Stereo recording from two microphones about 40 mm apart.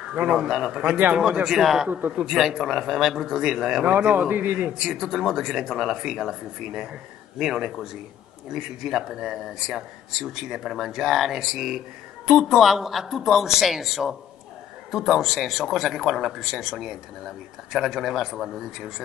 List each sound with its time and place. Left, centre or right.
0.1 s a man's voice: right
0.5 s speech: centre
1.6 s speech: centre
1.9 s a man's voice: right
2.2 s speech: centre
4.1 s a man's voice: right
4.8 s speech: centre